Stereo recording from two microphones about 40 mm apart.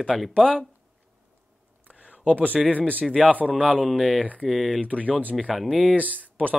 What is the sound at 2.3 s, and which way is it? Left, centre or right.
Speech, right.